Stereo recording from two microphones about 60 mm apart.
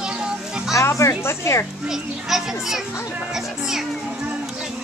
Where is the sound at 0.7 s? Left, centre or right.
Left.